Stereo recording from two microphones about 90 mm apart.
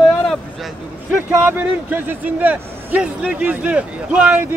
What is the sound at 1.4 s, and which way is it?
A man's voice, 20° right (ahead or behind).